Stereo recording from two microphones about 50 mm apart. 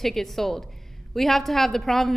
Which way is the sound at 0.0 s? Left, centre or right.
Centre.